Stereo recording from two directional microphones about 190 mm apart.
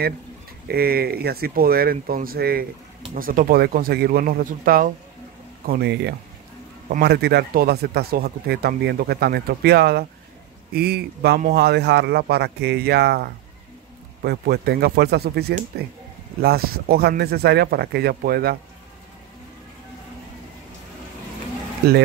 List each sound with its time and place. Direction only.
0.7 s speech: 55° right (ahead or behind)
5.7 s speech: 60° right (ahead or behind)